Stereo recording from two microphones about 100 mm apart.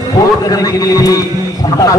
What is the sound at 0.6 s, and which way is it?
Speech, 35° left (ahead or behind).